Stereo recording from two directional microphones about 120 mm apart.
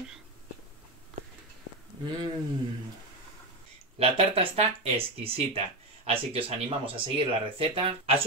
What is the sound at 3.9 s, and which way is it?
Speech, 55° right (ahead or behind).